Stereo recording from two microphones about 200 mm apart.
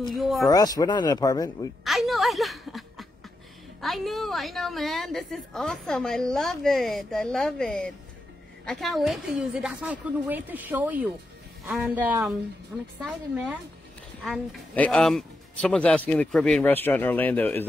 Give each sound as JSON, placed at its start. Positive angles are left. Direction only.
{"t": 0.2, "sound": "a woman's voice", "side_deg": 0}
{"t": 0.7, "sound": "speech", "side_deg": 20}
{"t": 1.9, "sound": "a sound", "side_deg": 0}
{"t": 3.8, "sound": "a woman's voice", "side_deg": 0}
{"t": 14.2, "sound": "a woman's voice", "side_deg": 0}